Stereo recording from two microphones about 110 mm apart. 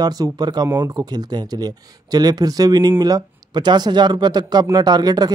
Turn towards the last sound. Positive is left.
turn(degrees=-40)  # may be behind; listen again after turning